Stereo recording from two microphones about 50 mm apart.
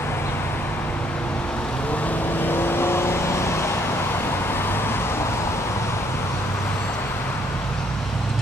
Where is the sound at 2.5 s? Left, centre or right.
Left.